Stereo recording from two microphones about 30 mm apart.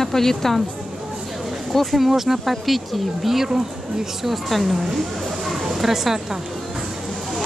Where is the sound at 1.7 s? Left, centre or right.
Centre.